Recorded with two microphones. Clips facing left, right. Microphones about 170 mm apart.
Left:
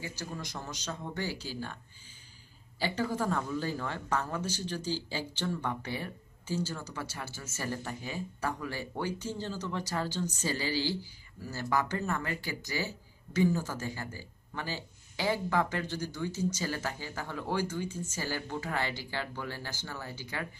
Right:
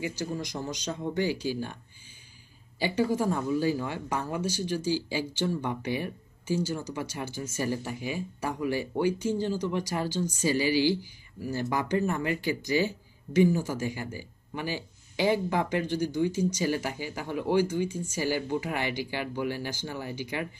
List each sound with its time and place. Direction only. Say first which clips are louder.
0.0 s speech: right 8 dB; 15° right (ahead or behind)
2.8 s speech: right 5 dB; 15° right (ahead or behind)